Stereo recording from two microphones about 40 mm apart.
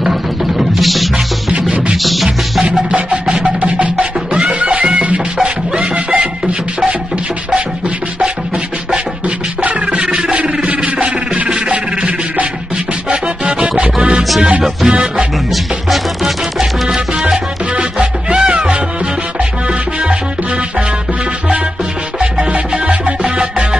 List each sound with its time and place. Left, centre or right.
0.0 s music: centre
2.9 s music: right
9.8 s music: right
15.5 s music: centre
16.8 s music: centre
18.3 s music: right
22.2 s music: right